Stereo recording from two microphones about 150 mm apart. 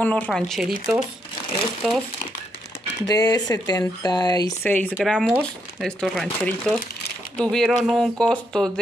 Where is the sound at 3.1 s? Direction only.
25° left (ahead or behind).